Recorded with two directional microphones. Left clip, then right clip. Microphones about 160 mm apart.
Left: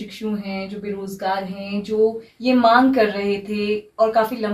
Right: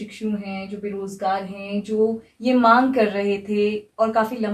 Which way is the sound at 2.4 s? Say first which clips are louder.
Left 1 dB; 15° right (ahead or behind).